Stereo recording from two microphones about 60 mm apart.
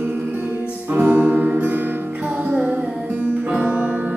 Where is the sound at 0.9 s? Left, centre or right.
Right.